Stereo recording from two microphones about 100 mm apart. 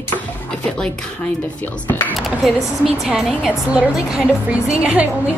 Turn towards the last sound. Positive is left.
turn(degrees=-10)  # may be behind; listen again after turning